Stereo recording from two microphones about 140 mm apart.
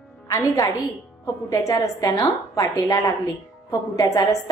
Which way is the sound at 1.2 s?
20° left (ahead or behind).